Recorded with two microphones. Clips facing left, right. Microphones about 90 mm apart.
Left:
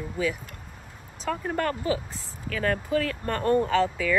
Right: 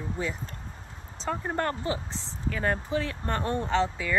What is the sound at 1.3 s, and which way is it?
Speech, 20° right (ahead or behind).